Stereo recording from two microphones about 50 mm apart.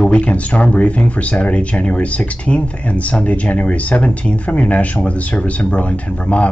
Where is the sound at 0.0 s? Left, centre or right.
Left.